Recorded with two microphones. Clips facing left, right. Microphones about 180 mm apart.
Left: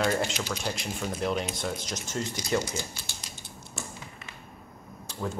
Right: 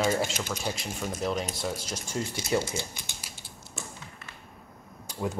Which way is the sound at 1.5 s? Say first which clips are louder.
Even; 5° right (ahead or behind).